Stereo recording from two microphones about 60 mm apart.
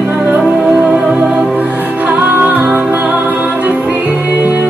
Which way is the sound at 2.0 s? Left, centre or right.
Right.